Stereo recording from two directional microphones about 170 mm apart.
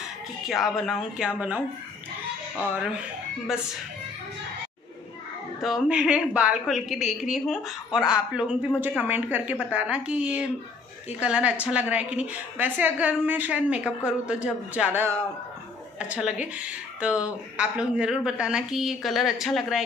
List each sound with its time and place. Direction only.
0.5 s a woman's voice: centre (ahead or behind)
5.6 s a woman's voice: 5° right (ahead or behind)